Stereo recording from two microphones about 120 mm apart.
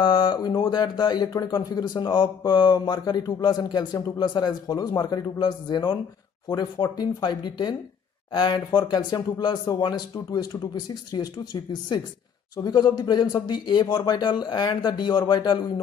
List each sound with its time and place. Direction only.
0.0 s speech: 40° left (ahead or behind)